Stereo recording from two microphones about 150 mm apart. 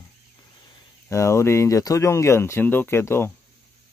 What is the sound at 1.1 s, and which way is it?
Speech, 20° left (ahead or behind).